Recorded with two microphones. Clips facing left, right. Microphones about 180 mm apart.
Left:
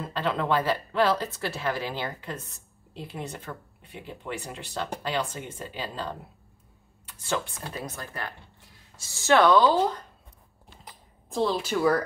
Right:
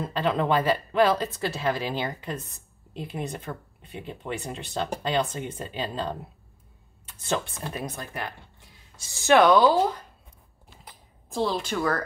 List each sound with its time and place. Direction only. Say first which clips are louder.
0.1 s speech: right 2 dB; 20° right (ahead or behind)
7.2 s speech: right 2 dB; 20° right (ahead or behind)
11.2 s a woman's voice: left 1 dB; centre (ahead or behind)